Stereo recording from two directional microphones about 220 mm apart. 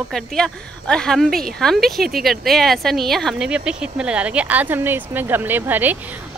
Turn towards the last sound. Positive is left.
turn(degrees=-10)  # may be behind; listen again after turning